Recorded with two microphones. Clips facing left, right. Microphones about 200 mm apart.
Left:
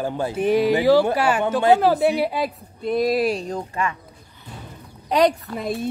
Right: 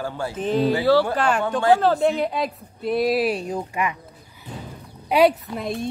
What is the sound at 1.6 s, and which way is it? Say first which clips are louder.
Speech: left 1 dB; 20° left (ahead or behind).